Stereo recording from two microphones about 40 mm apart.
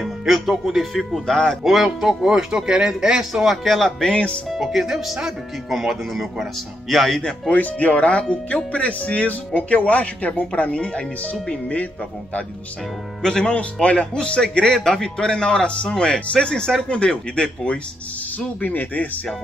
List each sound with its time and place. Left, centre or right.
0.3 s speech: centre
1.2 s speech: centre
1.6 s speech: centre
2.2 s speech: centre
3.4 s speech: centre
4.0 s speech: left
4.5 s speech: centre
7.4 s speech: left
13.2 s speech: centre
14.7 s speech: centre
18.6 s speech: left